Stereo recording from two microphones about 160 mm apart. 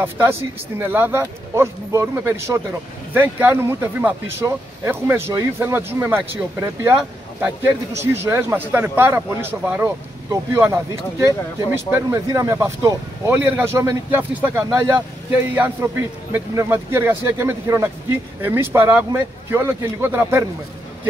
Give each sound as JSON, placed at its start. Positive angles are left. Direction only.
{"t": 0.0, "sound": "speech", "side_deg": -15}